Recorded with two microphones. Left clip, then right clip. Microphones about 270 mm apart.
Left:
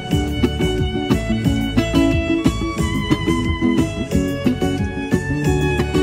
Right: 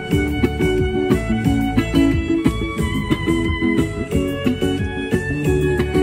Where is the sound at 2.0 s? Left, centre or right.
Centre.